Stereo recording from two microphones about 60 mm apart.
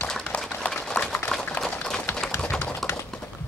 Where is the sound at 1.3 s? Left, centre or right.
Centre.